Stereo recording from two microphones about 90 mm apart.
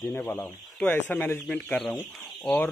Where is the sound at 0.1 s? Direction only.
30° left (ahead or behind).